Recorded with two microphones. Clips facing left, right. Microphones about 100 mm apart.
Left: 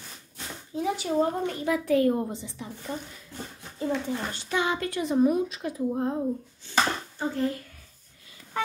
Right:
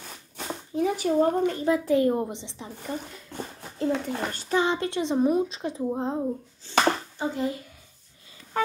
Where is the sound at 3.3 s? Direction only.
65° right (ahead or behind).